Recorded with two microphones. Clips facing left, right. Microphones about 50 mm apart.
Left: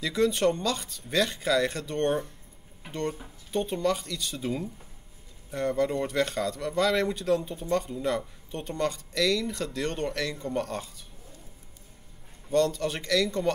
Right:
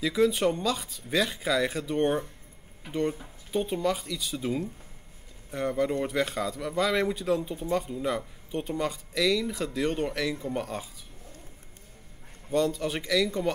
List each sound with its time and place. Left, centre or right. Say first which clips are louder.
0.0 s speech: even; centre
12.4 s speech: left 2 dB; centre